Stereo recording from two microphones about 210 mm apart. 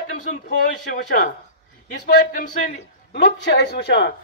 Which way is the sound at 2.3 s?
35° left (ahead or behind).